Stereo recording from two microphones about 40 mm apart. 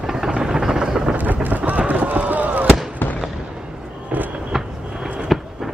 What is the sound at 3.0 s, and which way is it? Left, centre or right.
Fireworks, left.